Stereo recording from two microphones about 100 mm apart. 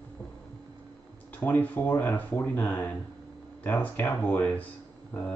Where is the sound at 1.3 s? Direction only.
20° left (ahead or behind).